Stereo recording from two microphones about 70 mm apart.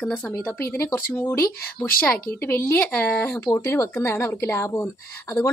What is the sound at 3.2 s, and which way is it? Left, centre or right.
A woman's voice, left.